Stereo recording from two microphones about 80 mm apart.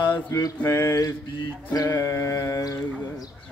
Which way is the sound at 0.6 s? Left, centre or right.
Left.